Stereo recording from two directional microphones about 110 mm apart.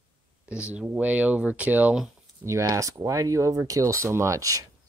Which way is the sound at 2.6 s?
30° right (ahead or behind).